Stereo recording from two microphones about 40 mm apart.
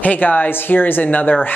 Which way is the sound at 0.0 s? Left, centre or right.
Left.